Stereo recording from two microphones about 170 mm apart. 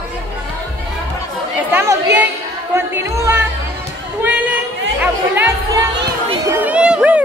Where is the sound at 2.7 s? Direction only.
15° right (ahead or behind).